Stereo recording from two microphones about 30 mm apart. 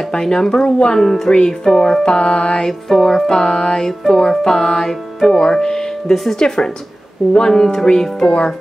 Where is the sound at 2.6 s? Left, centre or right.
Centre.